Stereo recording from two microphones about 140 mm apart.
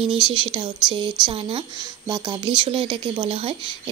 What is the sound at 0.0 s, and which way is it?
Speech, 35° right (ahead or behind).